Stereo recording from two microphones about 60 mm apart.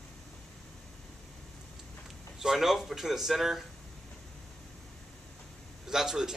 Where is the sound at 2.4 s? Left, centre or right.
Centre.